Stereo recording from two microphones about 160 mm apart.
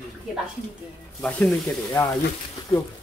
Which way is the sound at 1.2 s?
10° left (ahead or behind).